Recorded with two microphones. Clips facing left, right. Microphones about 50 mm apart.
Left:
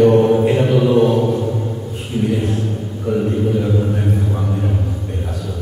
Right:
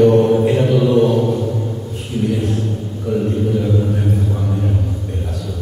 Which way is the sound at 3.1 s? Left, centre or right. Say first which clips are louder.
Even; centre.